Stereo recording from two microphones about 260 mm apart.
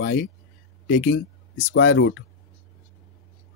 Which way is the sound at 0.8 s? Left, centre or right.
Left.